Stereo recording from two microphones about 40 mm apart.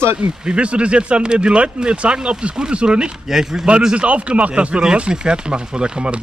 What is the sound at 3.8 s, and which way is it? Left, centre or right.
Speech, right.